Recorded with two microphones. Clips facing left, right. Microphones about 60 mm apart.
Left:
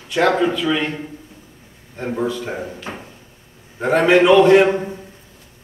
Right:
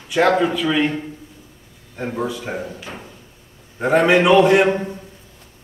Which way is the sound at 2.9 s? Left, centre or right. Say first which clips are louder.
Left 3 dB; left.